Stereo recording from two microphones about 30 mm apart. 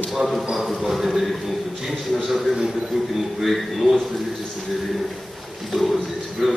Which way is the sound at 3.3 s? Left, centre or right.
Centre.